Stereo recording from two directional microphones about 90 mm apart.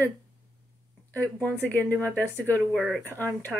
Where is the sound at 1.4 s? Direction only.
20° left (ahead or behind).